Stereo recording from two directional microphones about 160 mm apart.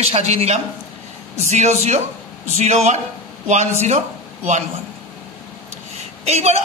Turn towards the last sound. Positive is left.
turn(degrees=-40)  # may be behind; listen again after turning